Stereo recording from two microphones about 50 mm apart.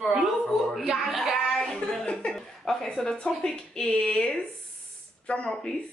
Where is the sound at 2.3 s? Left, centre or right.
Centre.